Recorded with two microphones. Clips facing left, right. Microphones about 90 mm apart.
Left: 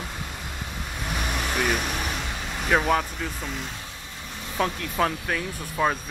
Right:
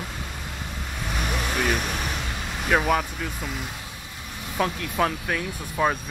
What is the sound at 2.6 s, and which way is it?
Speech, 5° right (ahead or behind).